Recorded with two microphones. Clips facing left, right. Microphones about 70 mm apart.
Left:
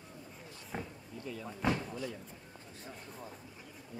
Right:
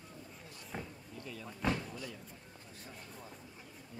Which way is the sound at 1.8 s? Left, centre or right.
Left.